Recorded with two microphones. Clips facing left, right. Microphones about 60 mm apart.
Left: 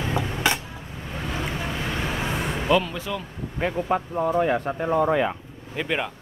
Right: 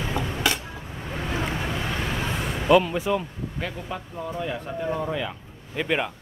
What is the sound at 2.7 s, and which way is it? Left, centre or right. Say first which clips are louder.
Speech: right 5 dB; centre.